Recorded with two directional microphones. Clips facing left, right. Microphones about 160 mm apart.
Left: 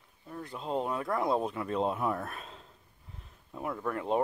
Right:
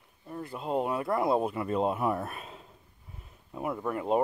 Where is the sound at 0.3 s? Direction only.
5° right (ahead or behind).